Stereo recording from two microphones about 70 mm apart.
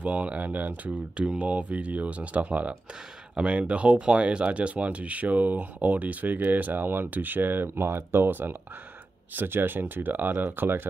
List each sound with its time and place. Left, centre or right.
0.0 s speech: centre